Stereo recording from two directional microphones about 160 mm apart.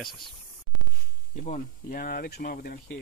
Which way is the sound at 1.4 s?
55° left (ahead or behind).